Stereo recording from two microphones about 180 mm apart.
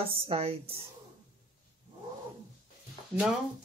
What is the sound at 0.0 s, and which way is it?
Speech, 30° right (ahead or behind).